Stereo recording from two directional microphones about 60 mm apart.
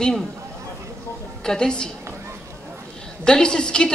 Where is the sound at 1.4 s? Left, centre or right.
Centre.